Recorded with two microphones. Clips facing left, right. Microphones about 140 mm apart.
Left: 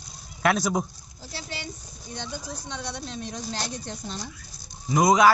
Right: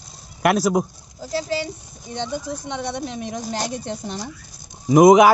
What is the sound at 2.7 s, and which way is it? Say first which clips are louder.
Speech: right 7 dB; 20° right (ahead or behind).